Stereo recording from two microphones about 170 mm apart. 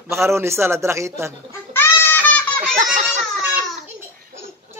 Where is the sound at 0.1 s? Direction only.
15° right (ahead or behind).